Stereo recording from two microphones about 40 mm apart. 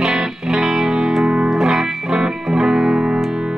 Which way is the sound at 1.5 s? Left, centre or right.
Centre.